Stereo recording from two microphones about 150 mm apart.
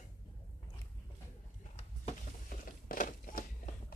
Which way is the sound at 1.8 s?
50° left (ahead or behind).